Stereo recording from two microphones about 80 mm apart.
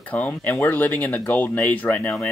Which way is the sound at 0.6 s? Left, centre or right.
Left.